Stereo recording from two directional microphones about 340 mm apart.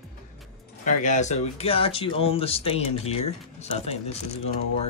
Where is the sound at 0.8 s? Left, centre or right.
Left.